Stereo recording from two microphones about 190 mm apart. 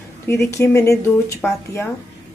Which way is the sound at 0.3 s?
15° left (ahead or behind).